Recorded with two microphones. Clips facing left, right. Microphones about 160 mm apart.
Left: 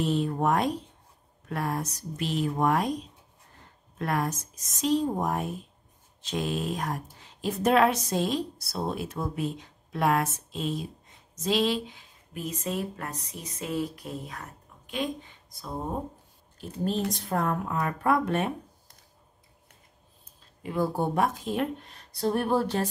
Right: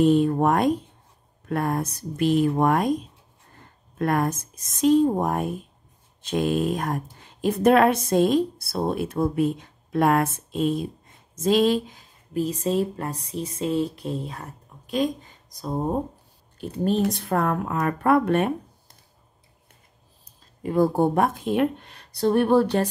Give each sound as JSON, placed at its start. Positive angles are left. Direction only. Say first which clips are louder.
{"t": 0.0, "sound": "speech", "louder": "right 8 dB", "side_deg": -50}
{"t": 16.8, "sound": "speech", "louder": "right 6 dB", "side_deg": -60}
{"t": 20.6, "sound": "speech", "louder": "right 7 dB", "side_deg": -45}